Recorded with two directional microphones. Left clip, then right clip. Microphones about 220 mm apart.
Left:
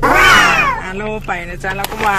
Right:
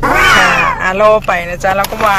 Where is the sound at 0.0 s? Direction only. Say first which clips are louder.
Even; centre (ahead or behind).